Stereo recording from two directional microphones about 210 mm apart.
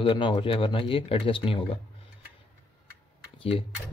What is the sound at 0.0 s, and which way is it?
Speech, 25° left (ahead or behind).